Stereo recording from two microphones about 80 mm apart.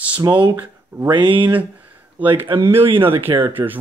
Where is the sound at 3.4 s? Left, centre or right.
Right.